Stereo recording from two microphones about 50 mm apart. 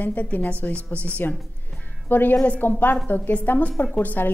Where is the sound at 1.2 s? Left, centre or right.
Left.